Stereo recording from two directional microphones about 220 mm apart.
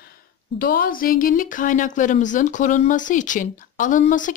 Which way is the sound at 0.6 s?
40° left (ahead or behind).